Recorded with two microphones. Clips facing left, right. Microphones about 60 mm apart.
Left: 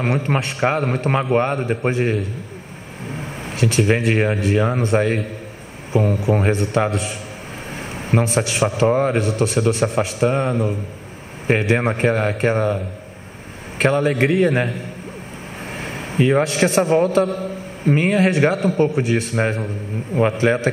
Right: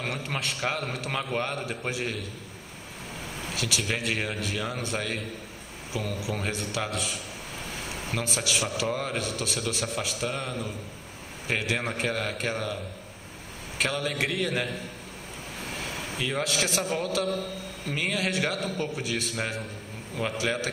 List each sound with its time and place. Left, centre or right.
0.0 s a man's voice: left
0.7 s a man's voice: left
15.7 s a man's voice: left
17.0 s a man's voice: left